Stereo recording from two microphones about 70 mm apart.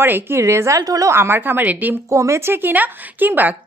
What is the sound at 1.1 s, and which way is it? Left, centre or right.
Speech, right.